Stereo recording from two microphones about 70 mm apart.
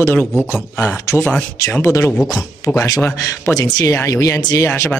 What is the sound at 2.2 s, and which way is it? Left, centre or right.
Speech, left.